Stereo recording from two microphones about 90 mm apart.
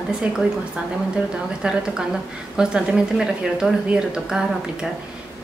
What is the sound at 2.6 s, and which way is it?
Speech, 10° right (ahead or behind).